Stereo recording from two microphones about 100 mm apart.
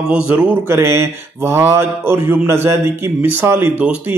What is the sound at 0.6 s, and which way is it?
Mantra, 25° right (ahead or behind).